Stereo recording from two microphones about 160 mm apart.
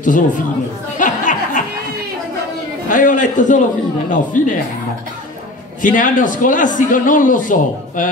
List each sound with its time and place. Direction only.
0.9 s a sound: 55° left (ahead or behind)
2.9 s a man's voice: 55° left (ahead or behind)
5.8 s a man's voice: 55° left (ahead or behind)